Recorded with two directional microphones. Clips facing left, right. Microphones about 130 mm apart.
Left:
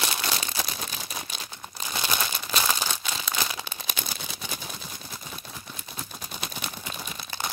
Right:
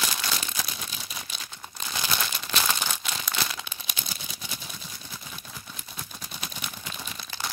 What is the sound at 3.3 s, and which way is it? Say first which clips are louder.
Crumpling: left 2 dB; 15° left (ahead or behind).